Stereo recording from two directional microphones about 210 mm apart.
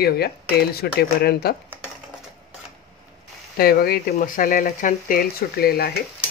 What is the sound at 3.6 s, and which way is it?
Speech, 45° left (ahead or behind).